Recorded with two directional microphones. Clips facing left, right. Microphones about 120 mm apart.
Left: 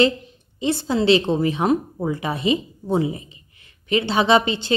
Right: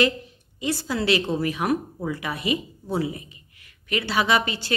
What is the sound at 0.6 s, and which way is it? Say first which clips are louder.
A woman's voice: left 5 dB; 25° left (ahead or behind).